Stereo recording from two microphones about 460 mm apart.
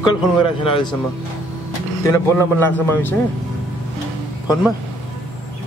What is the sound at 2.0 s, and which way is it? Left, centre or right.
A man's voice, centre.